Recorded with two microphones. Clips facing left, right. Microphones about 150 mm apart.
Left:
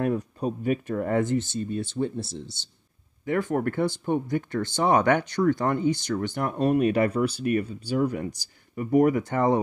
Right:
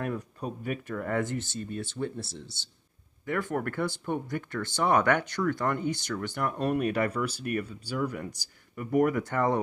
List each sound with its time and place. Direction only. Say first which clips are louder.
0.0 s speech: left 7 dB; 25° left (ahead or behind)